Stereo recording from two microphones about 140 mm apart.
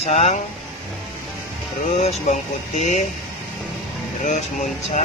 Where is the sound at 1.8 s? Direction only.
55° left (ahead or behind).